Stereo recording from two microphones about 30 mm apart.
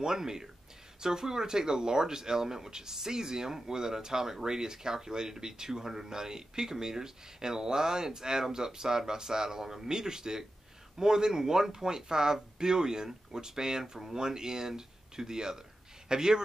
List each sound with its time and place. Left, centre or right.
0.0 s speech: centre